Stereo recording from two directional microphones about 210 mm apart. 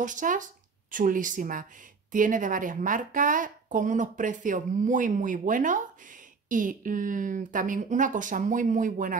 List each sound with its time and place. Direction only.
0.0 s a woman's voice: 35° right (ahead or behind)